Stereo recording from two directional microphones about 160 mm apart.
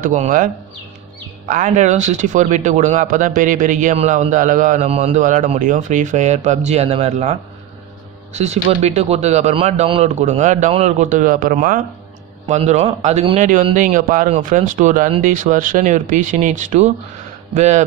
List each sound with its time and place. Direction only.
0.0 s speech: 55° right (ahead or behind)
1.5 s speech: 50° right (ahead or behind)
12.4 s speech: 45° right (ahead or behind)
13.4 s speech: 50° right (ahead or behind)